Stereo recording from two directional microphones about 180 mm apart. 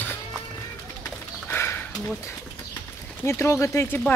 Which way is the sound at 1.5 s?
15° left (ahead or behind).